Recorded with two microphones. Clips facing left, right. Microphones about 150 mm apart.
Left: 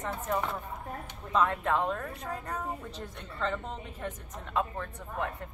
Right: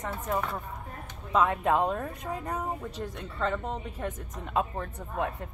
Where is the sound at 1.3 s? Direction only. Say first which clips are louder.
Right 3 dB; 15° right (ahead or behind).